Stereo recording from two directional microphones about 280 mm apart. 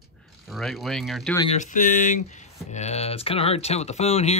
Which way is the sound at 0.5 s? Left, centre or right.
Centre.